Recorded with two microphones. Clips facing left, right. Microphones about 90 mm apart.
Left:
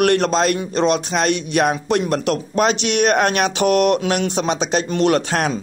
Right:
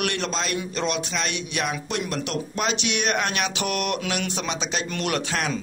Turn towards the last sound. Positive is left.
turn(degrees=35)  # may be behind; listen again after turning